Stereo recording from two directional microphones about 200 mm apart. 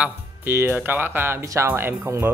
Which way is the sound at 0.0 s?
10° right (ahead or behind).